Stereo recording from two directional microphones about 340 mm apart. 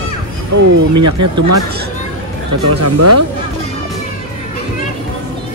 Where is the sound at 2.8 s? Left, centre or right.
Right.